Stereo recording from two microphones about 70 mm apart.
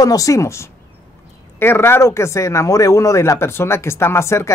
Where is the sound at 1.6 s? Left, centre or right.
Left.